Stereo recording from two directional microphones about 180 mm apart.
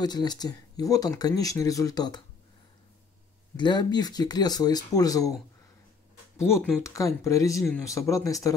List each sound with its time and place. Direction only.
0.0 s speech: 25° left (ahead or behind)
3.5 s speech: 25° left (ahead or behind)
6.3 s speech: 15° left (ahead or behind)